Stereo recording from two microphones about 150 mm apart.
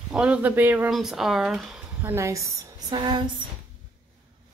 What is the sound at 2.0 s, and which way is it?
A woman's voice, 20° right (ahead or behind).